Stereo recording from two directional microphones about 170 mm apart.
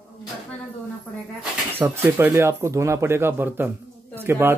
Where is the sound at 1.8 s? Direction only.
15° right (ahead or behind).